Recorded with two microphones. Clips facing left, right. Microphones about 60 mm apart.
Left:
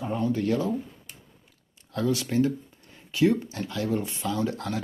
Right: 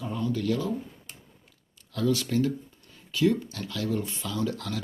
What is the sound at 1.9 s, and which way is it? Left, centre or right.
Speech, left.